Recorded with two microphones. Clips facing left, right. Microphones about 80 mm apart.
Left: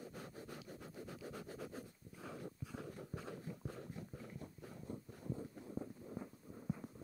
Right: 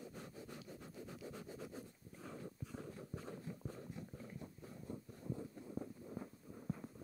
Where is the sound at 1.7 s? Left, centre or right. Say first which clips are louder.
Left 1 dB; left.